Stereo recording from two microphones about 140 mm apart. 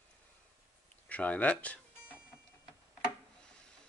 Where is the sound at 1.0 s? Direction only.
10° left (ahead or behind).